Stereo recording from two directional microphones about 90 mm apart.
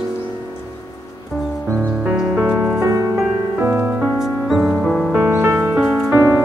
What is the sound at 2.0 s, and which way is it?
Music, 15° right (ahead or behind).